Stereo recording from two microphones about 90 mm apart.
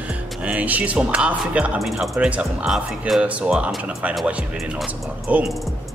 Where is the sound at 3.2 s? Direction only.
15° right (ahead or behind).